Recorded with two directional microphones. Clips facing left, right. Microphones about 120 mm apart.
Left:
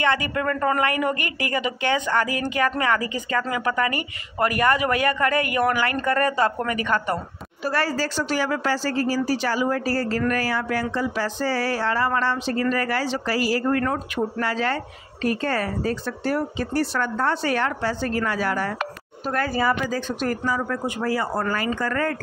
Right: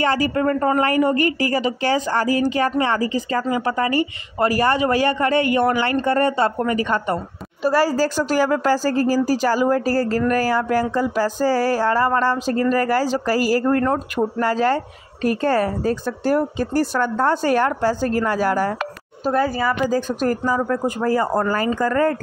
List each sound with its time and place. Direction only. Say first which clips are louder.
0.0 s a woman's voice: right 4 dB; 35° right (ahead or behind)
7.9 s a woman's voice: right 5 dB; 45° right (ahead or behind)
19.4 s speech: right 2 dB; 5° right (ahead or behind)
19.9 s a woman's voice: right 5 dB; 40° right (ahead or behind)